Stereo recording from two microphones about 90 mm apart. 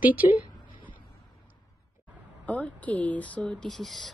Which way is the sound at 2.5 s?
15° left (ahead or behind).